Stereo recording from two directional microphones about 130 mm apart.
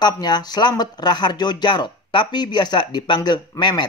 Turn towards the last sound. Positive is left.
turn(degrees=35)  # may be behind; listen again after turning